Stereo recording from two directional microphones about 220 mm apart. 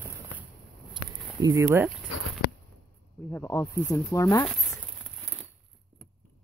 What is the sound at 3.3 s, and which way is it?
Speech, 10° left (ahead or behind).